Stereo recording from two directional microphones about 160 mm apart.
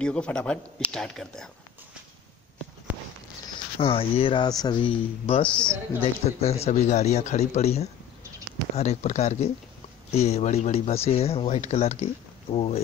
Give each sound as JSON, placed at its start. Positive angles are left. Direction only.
{"t": 0.0, "sound": "speech", "side_deg": 5}
{"t": 3.7, "sound": "a man's voice", "side_deg": 35}